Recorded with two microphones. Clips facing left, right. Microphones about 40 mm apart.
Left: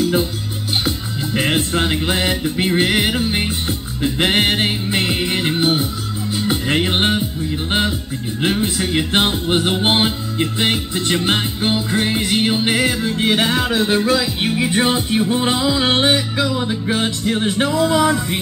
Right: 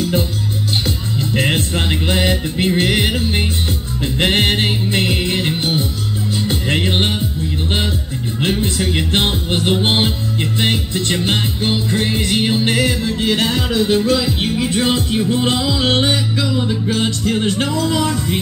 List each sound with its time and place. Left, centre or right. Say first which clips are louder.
0.8 s music: right 1 dB; centre
8.4 s music: even; centre
14.4 s music: even; left